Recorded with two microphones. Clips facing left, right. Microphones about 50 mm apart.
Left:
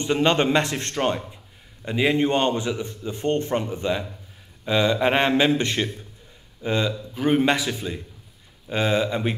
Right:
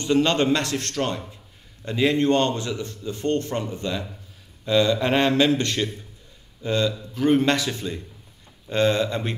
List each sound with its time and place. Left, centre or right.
0.0 s a man's voice: left